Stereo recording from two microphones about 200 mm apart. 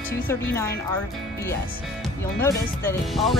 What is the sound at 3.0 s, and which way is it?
Speech, centre (ahead or behind).